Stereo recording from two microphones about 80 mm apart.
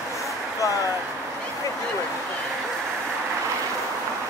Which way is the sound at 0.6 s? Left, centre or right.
Left.